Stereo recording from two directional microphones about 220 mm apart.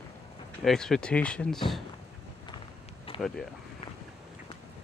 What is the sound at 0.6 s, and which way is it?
Speech, centre (ahead or behind).